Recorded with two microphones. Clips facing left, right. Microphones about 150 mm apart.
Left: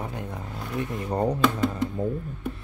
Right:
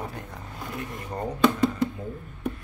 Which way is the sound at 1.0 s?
35° left (ahead or behind).